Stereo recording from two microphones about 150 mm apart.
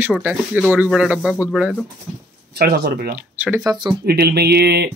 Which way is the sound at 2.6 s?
90° right.